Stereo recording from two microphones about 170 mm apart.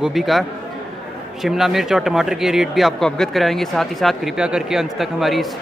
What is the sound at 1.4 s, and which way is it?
Speech, centre (ahead or behind).